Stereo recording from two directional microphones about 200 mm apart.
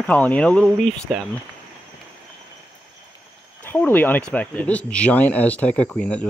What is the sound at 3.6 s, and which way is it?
Speech, 10° left (ahead or behind).